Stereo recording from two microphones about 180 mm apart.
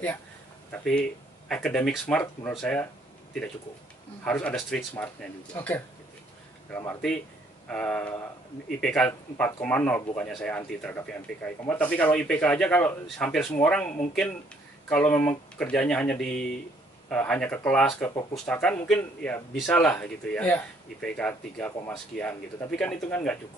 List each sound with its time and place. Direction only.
0.7 s speech: 5° left (ahead or behind)
4.2 s speech: 5° left (ahead or behind)
7.6 s speech: 5° left (ahead or behind)